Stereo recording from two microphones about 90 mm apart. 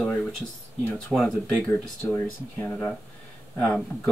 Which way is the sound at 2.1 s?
20° left (ahead or behind).